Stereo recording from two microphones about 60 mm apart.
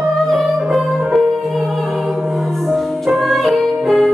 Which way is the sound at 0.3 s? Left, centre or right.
Centre.